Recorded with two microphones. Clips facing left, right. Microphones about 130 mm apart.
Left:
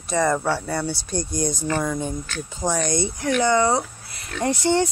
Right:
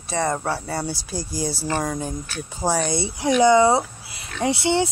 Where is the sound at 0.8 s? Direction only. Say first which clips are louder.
Left 2 dB; 5° right (ahead or behind).